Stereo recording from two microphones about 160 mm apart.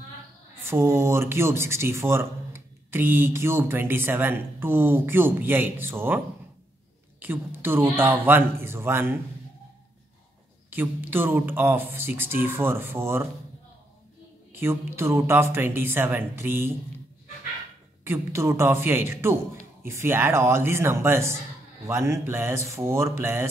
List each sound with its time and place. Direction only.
0.7 s speech: 15° right (ahead or behind)
10.7 s speech: 10° right (ahead or behind)
14.5 s speech: 15° right (ahead or behind)
18.0 s speech: 15° right (ahead or behind)